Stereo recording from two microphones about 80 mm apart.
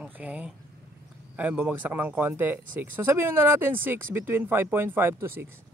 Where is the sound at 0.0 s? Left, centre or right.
Centre.